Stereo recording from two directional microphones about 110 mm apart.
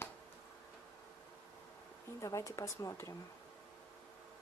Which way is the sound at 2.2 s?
30° left (ahead or behind).